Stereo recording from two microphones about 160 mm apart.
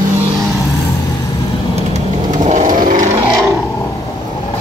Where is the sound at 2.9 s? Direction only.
50° right (ahead or behind).